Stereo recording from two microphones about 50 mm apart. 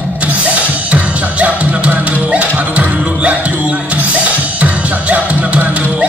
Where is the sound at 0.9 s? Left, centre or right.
Right.